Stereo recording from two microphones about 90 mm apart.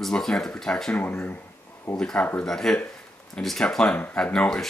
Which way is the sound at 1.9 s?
10° left (ahead or behind).